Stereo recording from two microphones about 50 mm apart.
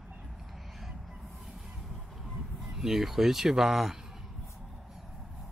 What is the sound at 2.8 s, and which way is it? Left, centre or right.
Speech, centre.